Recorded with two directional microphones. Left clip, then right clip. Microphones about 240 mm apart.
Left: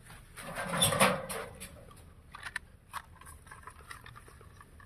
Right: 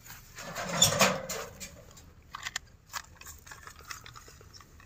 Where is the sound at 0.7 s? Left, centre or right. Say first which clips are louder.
Right 2 dB; right.